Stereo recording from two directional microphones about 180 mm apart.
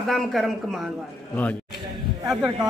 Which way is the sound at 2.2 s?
Centre (ahead or behind).